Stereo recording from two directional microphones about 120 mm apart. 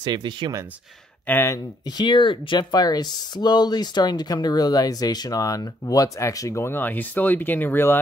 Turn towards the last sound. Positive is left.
turn(degrees=15)  # may be behind; listen again after turning